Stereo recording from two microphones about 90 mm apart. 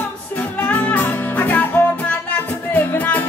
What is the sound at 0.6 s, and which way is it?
Music, 15° left (ahead or behind).